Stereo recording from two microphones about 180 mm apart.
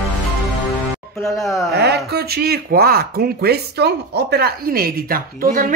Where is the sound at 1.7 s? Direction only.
65° right (ahead or behind).